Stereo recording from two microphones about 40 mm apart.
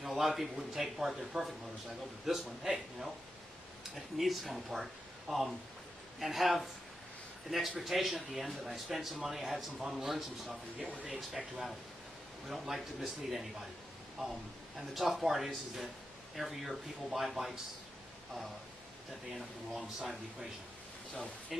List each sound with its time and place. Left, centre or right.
0.1 s a man's voice: centre
5.3 s a man's voice: centre
6.1 s a man's voice: centre
12.4 s a man's voice: centre
19.3 s a man's voice: centre